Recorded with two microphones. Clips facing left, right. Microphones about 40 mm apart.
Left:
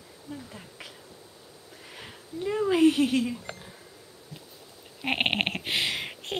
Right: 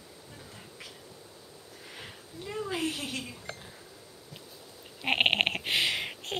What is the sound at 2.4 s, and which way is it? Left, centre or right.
Speech, left.